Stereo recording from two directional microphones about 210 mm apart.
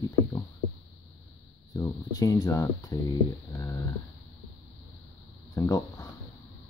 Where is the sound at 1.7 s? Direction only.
15° left (ahead or behind).